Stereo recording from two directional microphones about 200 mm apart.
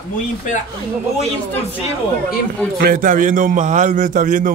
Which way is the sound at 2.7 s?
50° right (ahead or behind).